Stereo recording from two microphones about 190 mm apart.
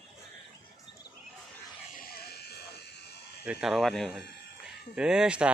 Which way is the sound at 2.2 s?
60° left (ahead or behind).